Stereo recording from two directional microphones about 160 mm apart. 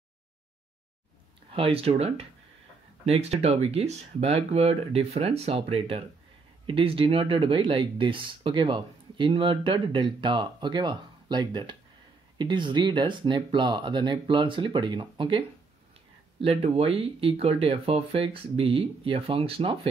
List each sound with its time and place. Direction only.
1.5 s speech: 35° right (ahead or behind)